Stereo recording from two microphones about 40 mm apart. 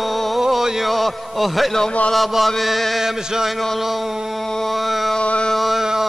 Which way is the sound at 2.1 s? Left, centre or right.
Centre.